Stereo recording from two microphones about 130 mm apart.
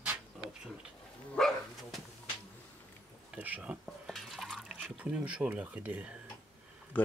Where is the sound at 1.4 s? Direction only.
Centre (ahead or behind).